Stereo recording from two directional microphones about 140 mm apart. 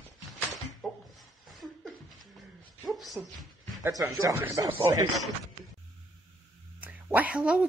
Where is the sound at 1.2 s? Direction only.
Centre (ahead or behind).